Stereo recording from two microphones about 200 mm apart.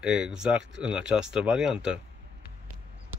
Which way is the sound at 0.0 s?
5° right (ahead or behind).